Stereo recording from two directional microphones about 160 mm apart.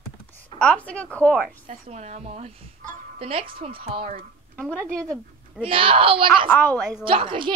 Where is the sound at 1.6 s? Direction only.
45° right (ahead or behind).